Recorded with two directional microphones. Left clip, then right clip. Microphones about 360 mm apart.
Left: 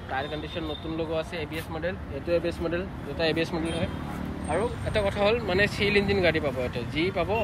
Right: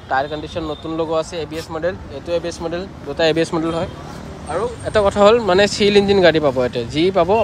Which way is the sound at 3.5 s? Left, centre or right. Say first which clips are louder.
Right 10 dB; right.